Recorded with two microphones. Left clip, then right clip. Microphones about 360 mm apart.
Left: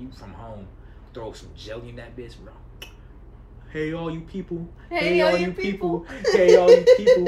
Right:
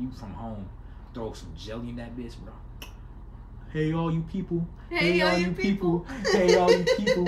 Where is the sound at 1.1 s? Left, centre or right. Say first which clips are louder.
Left 1 dB; centre.